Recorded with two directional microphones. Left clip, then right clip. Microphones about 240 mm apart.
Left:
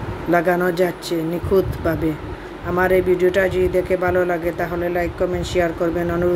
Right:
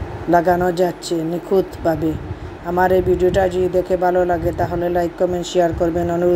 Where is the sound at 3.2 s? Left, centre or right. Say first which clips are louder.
Right 1 dB; centre.